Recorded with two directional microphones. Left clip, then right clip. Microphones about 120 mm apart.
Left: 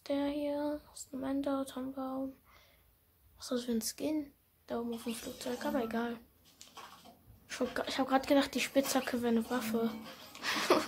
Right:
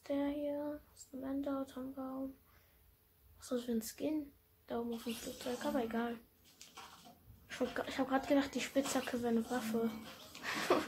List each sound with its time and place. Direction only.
0.0 s a sound: 35° left (ahead or behind)
1.2 s speech: 45° left (ahead or behind)
3.3 s speech: 25° left (ahead or behind)
7.4 s speech: 30° left (ahead or behind)